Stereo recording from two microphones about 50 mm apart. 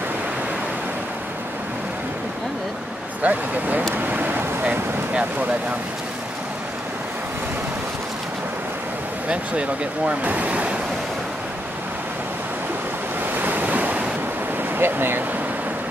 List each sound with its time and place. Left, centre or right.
3.2 s speech: right
3.9 s vehicle: right
9.3 s speech: right
13.4 s waves: right
14.8 s speech: right